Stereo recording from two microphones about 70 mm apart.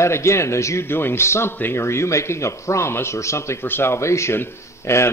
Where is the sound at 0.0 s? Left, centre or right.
Left.